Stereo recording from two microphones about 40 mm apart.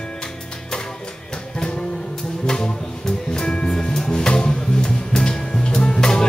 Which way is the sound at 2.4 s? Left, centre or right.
Centre.